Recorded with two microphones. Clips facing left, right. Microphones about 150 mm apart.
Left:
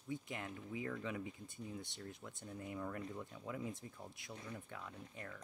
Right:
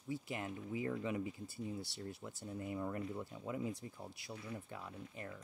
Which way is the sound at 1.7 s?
35° right (ahead or behind).